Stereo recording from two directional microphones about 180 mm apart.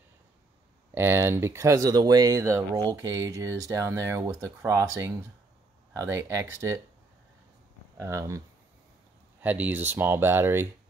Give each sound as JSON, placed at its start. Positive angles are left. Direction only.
{"t": 0.9, "sound": "speech", "side_deg": -10}
{"t": 8.0, "sound": "speech", "side_deg": -15}
{"t": 9.4, "sound": "speech", "side_deg": -10}